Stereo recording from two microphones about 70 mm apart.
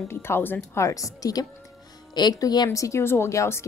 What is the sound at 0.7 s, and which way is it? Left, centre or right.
Speech, left.